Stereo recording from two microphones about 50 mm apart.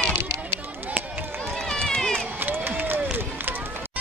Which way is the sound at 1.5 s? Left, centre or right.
Centre.